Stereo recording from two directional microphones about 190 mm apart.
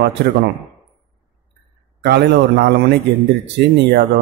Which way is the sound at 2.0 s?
60° right (ahead or behind).